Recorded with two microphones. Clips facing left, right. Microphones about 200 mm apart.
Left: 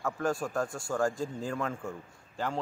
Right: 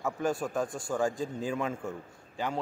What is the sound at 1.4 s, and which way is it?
A man's voice, 5° right (ahead or behind).